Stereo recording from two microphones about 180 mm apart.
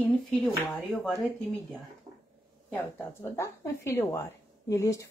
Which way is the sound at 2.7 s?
15° left (ahead or behind).